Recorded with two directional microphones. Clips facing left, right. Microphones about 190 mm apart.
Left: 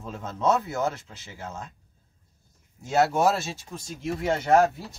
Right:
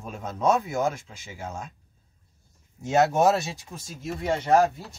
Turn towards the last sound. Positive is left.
turn(degrees=-5)  # may be behind; listen again after turning